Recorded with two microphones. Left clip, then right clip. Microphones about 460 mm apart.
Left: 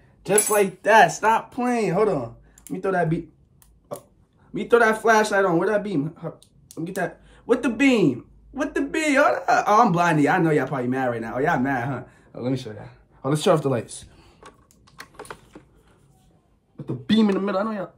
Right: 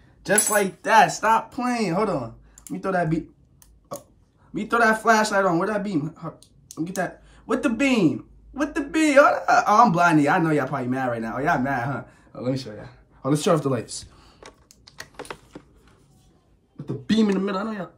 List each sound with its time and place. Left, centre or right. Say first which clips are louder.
0.8 s speech: left 1 dB; centre
4.6 s speech: left 2 dB; centre
16.7 s speech: left 1 dB; centre